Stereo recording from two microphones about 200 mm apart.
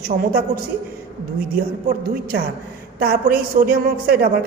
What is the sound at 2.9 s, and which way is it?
A man's voice, 45° right (ahead or behind).